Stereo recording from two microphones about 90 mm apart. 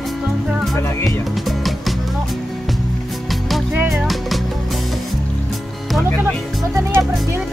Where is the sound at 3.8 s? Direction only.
5° right (ahead or behind).